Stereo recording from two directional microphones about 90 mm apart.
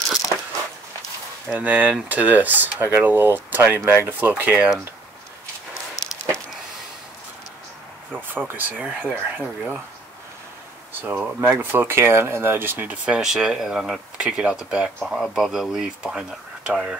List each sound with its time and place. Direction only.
1.5 s speech: 20° right (ahead or behind)
8.1 s speech: 20° right (ahead or behind)
10.9 s speech: 25° right (ahead or behind)